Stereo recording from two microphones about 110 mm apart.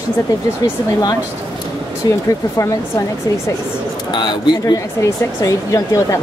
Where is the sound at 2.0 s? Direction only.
35° left (ahead or behind).